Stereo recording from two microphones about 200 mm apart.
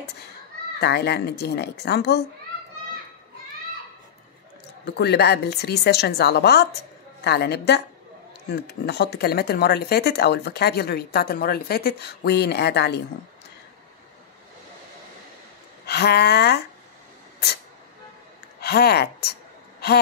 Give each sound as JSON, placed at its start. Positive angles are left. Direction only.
{"t": 0.7, "sound": "speech", "side_deg": 55}
{"t": 4.8, "sound": "speech", "side_deg": 55}
{"t": 15.8, "sound": "speech", "side_deg": 55}
{"t": 18.6, "sound": "speech", "side_deg": 55}